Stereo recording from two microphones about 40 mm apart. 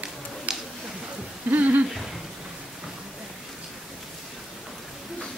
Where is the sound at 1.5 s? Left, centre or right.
Right.